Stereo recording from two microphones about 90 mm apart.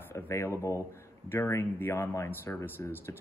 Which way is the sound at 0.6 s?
35° left (ahead or behind).